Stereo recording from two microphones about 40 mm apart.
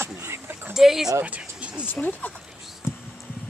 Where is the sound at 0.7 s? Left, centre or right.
Centre.